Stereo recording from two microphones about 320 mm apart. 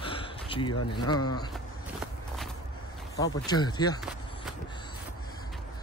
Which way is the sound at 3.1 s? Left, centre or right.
Centre.